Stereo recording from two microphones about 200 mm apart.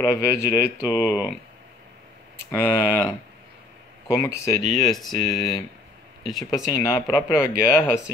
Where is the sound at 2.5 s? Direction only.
10° left (ahead or behind).